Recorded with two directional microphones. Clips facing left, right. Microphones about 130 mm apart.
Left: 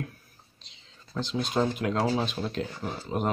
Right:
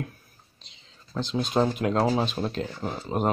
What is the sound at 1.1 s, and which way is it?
Speech, 30° right (ahead or behind).